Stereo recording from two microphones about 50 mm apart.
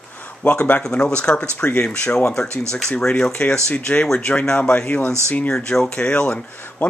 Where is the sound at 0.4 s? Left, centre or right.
Left.